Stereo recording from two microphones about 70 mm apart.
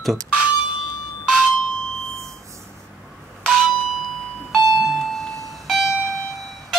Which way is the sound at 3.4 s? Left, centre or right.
Centre.